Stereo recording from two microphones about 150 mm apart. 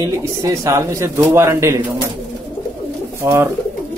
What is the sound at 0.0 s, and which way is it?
Speech, 20° right (ahead or behind).